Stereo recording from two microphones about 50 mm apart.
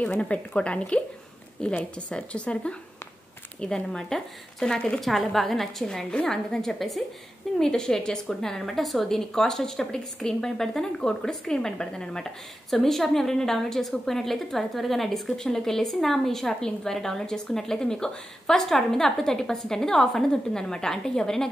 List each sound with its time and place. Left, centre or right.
0.6 s speech: left
3.6 s a woman's voice: centre
5.0 s a woman's voice: centre